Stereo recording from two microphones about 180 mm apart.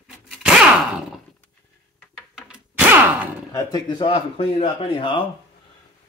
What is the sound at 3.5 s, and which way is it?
Speech, 20° left (ahead or behind).